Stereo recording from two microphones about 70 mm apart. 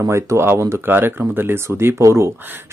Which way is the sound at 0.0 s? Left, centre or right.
Right.